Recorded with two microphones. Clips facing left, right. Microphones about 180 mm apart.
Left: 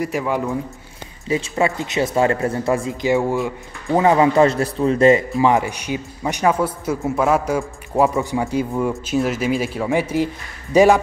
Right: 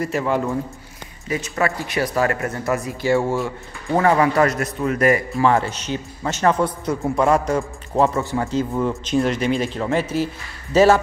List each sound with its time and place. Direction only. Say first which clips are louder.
0.0 s a man's voice: even; 10° left (ahead or behind)
1.3 s speech: left 3 dB; 25° left (ahead or behind)
5.4 s a man's voice: left 1 dB; 15° left (ahead or behind)